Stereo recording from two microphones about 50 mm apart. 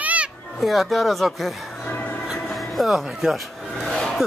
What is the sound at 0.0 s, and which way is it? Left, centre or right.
Children playing, right.